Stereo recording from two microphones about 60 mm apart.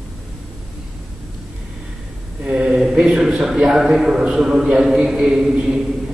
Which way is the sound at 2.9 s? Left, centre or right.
Centre.